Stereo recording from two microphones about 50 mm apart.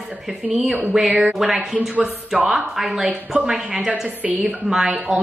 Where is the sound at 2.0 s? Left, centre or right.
Right.